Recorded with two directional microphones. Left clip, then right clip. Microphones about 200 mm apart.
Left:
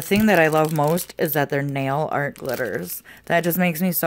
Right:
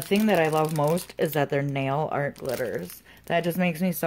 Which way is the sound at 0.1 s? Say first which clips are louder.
Left 5 dB; 35° left (ahead or behind).